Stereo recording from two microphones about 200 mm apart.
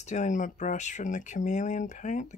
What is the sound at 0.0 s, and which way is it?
Speech, 35° left (ahead or behind).